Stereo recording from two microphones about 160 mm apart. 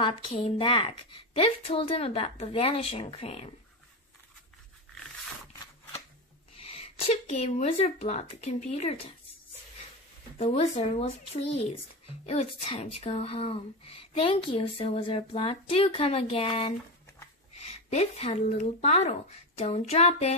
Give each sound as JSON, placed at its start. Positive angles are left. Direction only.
{"t": 0.0, "sound": "speech", "side_deg": 30}
{"t": 6.6, "sound": "speech", "side_deg": 45}
{"t": 10.4, "sound": "speech", "side_deg": 40}
{"t": 17.8, "sound": "speech", "side_deg": 40}